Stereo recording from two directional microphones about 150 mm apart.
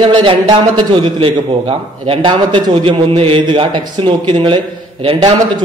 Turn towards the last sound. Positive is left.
turn(degrees=-35)  # may be behind; listen again after turning